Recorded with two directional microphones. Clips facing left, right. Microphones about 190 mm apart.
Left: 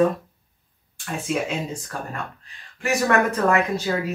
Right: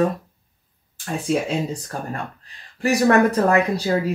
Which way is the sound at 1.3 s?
35° right (ahead or behind).